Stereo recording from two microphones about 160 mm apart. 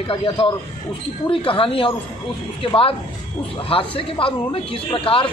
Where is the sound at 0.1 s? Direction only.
35° left (ahead or behind).